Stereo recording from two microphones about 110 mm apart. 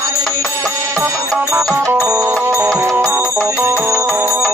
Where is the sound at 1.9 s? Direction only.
25° right (ahead or behind).